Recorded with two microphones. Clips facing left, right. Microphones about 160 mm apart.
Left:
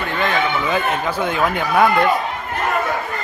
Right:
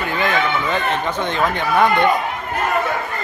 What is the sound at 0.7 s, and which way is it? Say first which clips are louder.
Speech: left 1 dB; 10° left (ahead or behind).